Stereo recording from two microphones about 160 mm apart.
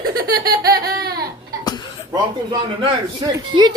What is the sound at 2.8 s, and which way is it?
Speech, 30° right (ahead or behind).